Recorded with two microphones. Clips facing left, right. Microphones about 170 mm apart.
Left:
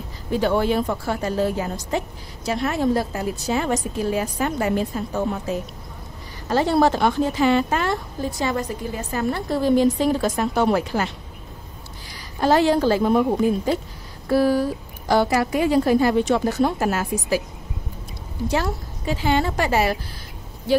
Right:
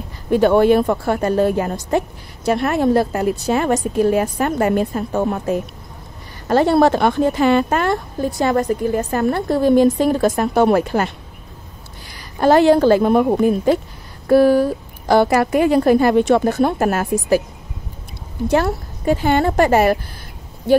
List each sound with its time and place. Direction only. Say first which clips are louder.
0.3 s a woman's voice: right 8 dB; 60° right (ahead or behind)
12.4 s a woman's voice: right 6 dB; 55° right (ahead or behind)
18.5 s a woman's voice: right 7 dB; 55° right (ahead or behind)